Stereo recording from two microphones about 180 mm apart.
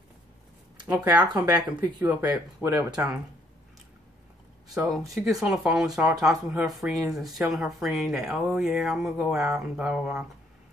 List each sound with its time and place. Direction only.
0.8 s speech: 10° right (ahead or behind)
2.0 s speech: 10° right (ahead or behind)
5.1 s speech: centre (ahead or behind)